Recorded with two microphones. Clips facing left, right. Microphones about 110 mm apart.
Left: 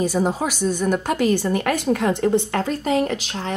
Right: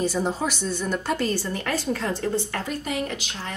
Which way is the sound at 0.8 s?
50° left (ahead or behind).